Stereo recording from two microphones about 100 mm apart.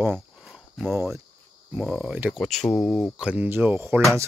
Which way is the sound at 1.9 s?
10° right (ahead or behind).